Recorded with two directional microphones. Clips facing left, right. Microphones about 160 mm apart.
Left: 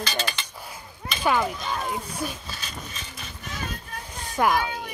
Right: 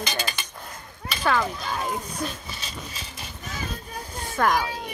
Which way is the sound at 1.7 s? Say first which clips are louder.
Even; centre (ahead or behind).